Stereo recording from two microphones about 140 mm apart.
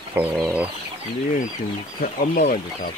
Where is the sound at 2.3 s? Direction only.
90° left.